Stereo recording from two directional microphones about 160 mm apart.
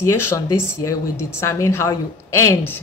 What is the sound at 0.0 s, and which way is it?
Speech, 15° left (ahead or behind).